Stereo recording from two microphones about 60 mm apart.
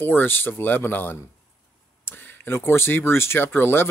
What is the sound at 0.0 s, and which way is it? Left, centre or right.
Speech, left.